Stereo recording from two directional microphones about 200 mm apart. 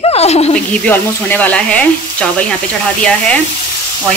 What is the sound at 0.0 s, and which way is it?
Snake, 30° left (ahead or behind).